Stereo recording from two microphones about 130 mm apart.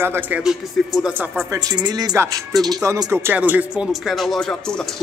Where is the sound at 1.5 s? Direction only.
30° right (ahead or behind); by 4.1 s 10° right (ahead or behind).